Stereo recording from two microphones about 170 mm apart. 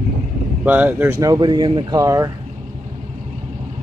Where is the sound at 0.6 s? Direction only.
10° right (ahead or behind).